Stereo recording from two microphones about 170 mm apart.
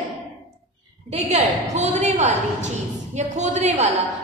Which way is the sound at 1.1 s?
40° right (ahead or behind).